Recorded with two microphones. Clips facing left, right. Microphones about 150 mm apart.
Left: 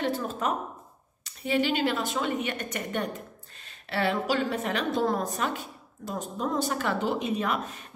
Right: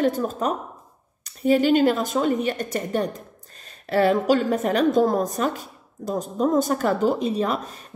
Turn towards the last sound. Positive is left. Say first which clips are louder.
# right 4 dB
turn(degrees=-35)  # may be behind; listen again after turning